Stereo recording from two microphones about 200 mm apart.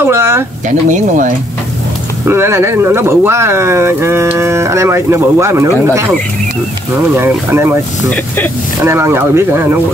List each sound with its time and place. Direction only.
0.0 s a sound: 10° right (ahead or behind)
0.7 s speech: 40° right (ahead or behind)
2.2 s speech: 10° right (ahead or behind)
7.2 s speech: 10° right (ahead or behind)
8.0 s speech: 5° left (ahead or behind)
8.7 s speech: 15° right (ahead or behind)